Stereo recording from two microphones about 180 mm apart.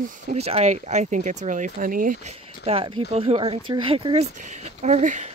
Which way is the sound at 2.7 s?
30° right (ahead or behind).